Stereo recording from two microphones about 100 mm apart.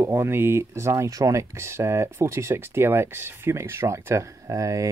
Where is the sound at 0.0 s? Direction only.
25° right (ahead or behind).